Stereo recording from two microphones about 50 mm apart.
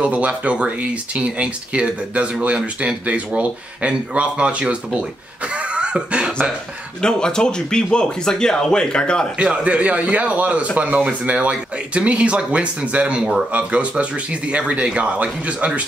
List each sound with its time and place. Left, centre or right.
0.0 s speech: right
5.8 s cough: centre
7.0 s speech: centre
9.4 s speech: right